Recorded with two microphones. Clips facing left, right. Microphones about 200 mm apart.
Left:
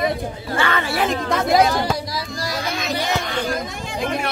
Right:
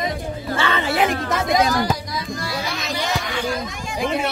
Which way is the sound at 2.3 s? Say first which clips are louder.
Left 1 dB; 40° left (ahead or behind).